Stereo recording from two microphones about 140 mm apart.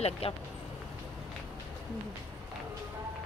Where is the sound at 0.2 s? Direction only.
45° left (ahead or behind).